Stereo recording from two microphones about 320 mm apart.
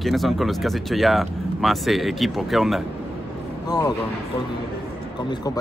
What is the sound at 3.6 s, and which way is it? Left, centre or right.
Speech, centre.